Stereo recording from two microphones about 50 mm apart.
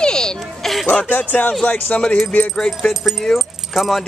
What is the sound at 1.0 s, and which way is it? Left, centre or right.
Speech, left.